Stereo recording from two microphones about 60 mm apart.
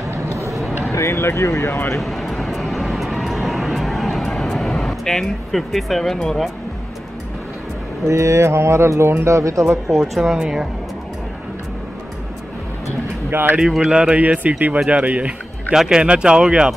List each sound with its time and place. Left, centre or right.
0.1 s a sound: right
0.5 s a sound: centre
0.9 s speech: left
2.0 s vehicle: centre
8.1 s a man's voice: right
9.9 s speech: centre
13.3 s speech: right
13.6 s speech: centre
14.2 s speech: right
15.7 s speech: centre